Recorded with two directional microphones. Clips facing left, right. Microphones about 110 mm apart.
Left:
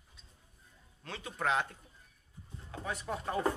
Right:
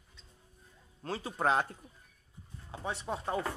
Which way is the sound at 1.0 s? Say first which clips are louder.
Right 4 dB; 35° right (ahead or behind).